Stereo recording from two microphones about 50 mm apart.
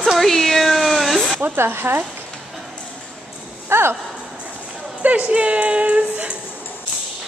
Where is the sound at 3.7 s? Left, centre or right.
Right.